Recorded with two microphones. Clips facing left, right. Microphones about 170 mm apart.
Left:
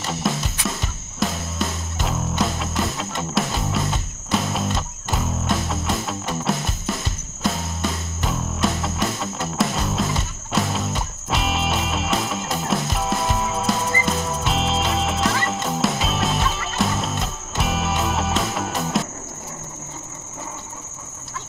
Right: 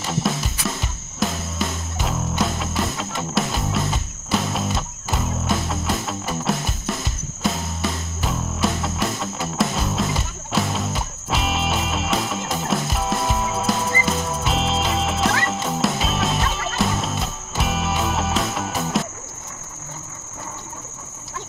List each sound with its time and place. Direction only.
0.0 s music: centre (ahead or behind)